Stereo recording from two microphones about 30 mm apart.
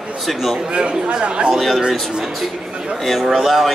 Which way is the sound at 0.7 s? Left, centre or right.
Right.